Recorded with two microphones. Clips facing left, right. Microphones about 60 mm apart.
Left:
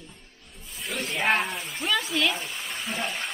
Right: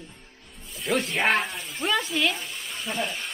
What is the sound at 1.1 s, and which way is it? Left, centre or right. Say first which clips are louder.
Speech: left 1 dB; right.